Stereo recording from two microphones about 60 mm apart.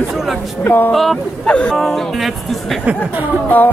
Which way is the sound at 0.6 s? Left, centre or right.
Left.